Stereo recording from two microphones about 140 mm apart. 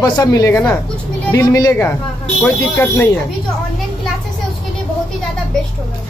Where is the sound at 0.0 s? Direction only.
25° left (ahead or behind).